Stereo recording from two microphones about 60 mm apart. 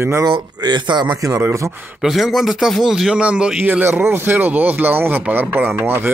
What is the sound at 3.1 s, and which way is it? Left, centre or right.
Speech, centre.